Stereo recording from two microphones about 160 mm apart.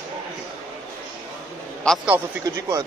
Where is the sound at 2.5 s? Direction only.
20° right (ahead or behind).